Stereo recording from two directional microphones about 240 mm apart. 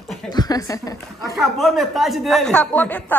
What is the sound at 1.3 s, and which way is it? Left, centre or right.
Speech, centre.